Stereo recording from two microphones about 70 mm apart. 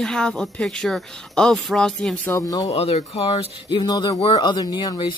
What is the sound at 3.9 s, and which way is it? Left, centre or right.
Speech, left.